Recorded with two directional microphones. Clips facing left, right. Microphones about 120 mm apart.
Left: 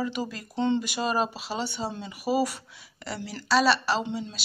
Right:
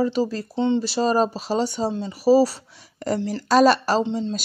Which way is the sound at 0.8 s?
35° right (ahead or behind).